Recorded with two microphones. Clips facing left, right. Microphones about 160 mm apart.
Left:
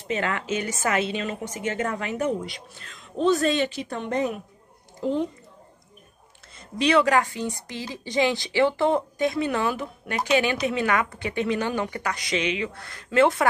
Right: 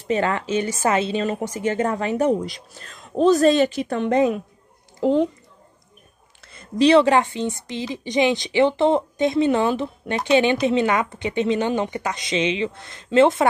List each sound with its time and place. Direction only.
0.1 s a woman's voice: 35° right (ahead or behind); by 5.2 s 90° right
6.8 s speech: 30° right (ahead or behind)